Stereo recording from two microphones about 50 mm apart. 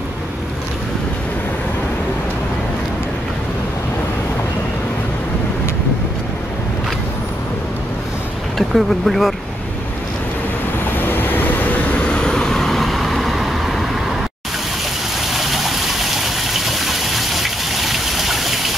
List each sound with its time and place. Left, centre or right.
8.5 s speech: centre
11.0 s vehicle: left
12.1 s vehicle: centre
15.3 s gush: centre